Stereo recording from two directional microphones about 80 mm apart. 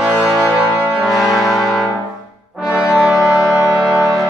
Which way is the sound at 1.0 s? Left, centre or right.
Centre.